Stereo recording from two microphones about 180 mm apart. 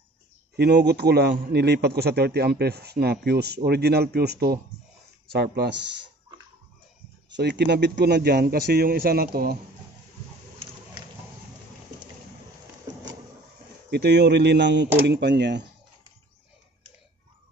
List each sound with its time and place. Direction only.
0.6 s a man's voice: 70° right (ahead or behind)
7.2 s a man's voice: 75° right (ahead or behind); by 9.6 s 55° right (ahead or behind)
13.8 s speech: 70° right (ahead or behind)